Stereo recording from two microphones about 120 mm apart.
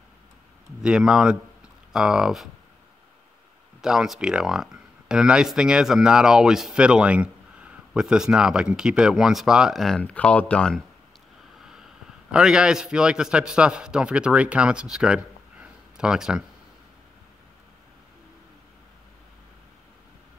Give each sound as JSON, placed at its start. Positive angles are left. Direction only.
{"t": 0.8, "sound": "a man's voice", "side_deg": -5}
{"t": 3.8, "sound": "speech", "side_deg": -5}
{"t": 12.3, "sound": "a man's voice", "side_deg": -5}